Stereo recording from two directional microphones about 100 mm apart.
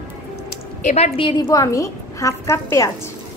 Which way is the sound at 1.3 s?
40° left (ahead or behind).